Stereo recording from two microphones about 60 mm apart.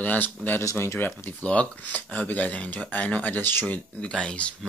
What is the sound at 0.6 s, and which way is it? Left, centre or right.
Speech, left.